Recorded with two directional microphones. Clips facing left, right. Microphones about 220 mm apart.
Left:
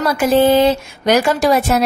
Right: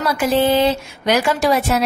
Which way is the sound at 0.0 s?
45° left (ahead or behind).